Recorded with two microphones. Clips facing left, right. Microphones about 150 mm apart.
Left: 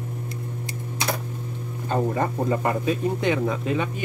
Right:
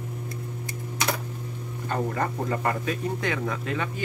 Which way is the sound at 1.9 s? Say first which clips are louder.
Left 4 dB; 20° left (ahead or behind).